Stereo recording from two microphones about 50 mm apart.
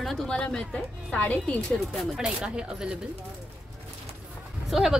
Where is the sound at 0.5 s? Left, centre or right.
Centre.